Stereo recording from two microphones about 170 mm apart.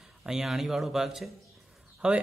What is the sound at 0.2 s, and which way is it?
A man's voice, 5° right (ahead or behind).